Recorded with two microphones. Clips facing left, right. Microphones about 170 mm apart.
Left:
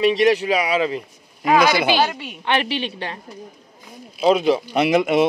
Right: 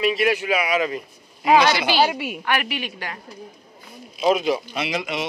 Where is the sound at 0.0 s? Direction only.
35° left (ahead or behind).